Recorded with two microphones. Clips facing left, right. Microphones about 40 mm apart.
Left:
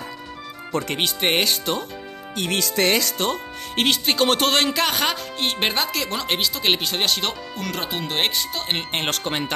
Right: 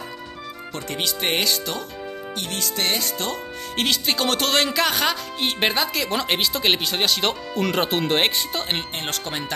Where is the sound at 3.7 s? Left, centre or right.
Centre.